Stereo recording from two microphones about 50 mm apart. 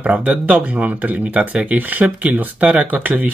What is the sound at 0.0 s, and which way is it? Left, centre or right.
Speech, right.